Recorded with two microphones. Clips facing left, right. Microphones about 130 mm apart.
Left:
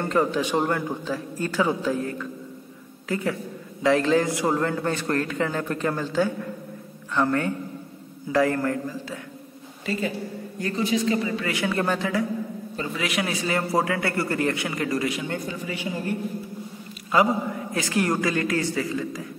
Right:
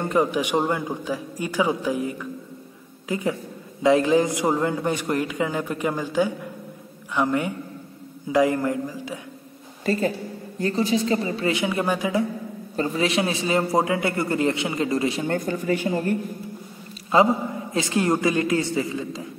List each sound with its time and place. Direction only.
0.0 s a man's voice: 15° right (ahead or behind)
9.8 s speech: 40° right (ahead or behind)
11.5 s a man's voice: 15° right (ahead or behind)
12.7 s a man's voice: 35° right (ahead or behind)
15.2 s speech: 50° right (ahead or behind)
17.1 s a man's voice: 25° right (ahead or behind)